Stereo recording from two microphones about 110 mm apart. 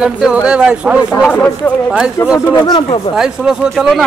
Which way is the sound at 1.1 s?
15° left (ahead or behind).